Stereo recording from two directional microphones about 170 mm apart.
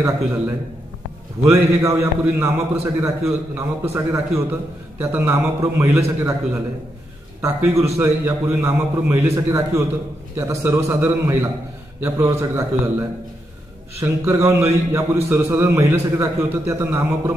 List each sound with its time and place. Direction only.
0.0 s a man's voice: 15° right (ahead or behind)
13.9 s a man's voice: 15° right (ahead or behind)